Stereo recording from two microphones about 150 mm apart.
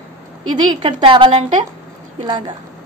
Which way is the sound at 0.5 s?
35° right (ahead or behind).